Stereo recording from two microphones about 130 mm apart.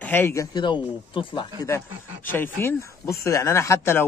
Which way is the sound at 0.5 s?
35° left (ahead or behind).